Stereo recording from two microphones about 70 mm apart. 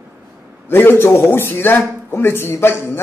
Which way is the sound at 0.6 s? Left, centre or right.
Left.